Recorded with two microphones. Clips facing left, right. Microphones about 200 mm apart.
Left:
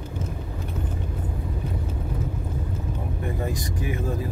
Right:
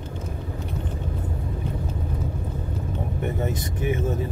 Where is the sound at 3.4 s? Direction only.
25° right (ahead or behind).